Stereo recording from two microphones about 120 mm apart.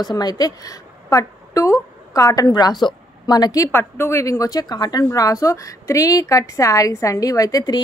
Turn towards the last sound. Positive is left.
turn(degrees=30)  # may be behind; listen again after turning